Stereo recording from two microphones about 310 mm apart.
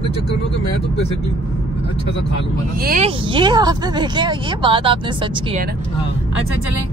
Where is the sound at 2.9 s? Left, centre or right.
Centre.